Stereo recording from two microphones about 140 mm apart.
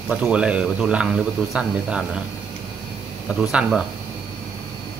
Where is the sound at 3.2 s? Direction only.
Centre (ahead or behind).